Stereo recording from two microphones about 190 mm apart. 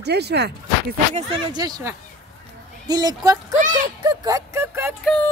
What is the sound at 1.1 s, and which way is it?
Speech, 25° right (ahead or behind).